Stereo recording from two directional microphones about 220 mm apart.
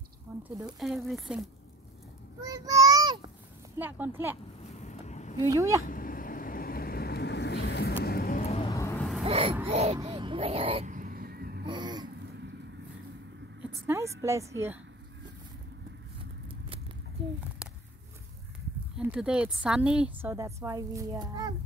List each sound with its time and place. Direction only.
0.4 s speech: centre (ahead or behind)
2.4 s a sound: 15° right (ahead or behind)
3.7 s a woman's voice: 10° right (ahead or behind)
4.7 s vehicle: 30° left (ahead or behind)
5.5 s a woman's voice: 15° right (ahead or behind)
5.9 s vehicle: 40° left (ahead or behind)
8.5 s vehicle: 15° left (ahead or behind)
9.2 s baby cry: 25° right (ahead or behind)
9.7 s speech: 30° right (ahead or behind)
9.9 s a sound: 25° right (ahead or behind); by 11.6 s 45° right (ahead or behind)
11.6 s a sound: 20° right (ahead or behind)
13.8 s a woman's voice: 15° right (ahead or behind)
16.4 s a sound: 25° right (ahead or behind)
18.9 s a woman's voice: 5° right (ahead or behind)